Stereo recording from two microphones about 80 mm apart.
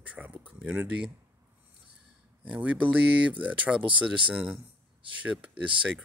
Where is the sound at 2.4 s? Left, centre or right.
Centre.